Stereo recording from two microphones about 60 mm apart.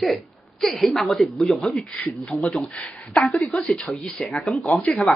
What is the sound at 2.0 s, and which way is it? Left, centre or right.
Speech, centre.